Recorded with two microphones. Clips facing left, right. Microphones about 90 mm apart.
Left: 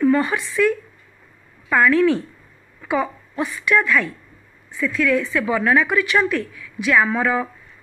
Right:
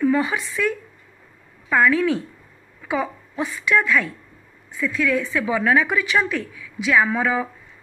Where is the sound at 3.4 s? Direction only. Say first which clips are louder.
Left 2 dB; 25° right (ahead or behind).